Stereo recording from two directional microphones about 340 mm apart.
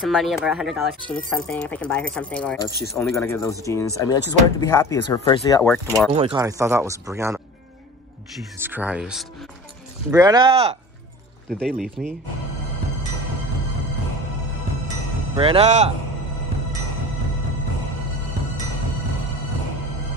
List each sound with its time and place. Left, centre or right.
0.0 s speech: centre
6.1 s speech: centre
8.5 s speech: centre
11.5 s speech: centre
15.3 s speech: centre